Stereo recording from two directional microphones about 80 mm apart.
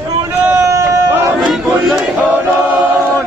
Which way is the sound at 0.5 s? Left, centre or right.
Right.